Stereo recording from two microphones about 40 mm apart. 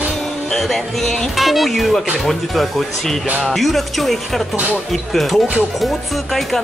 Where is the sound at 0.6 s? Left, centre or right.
Centre.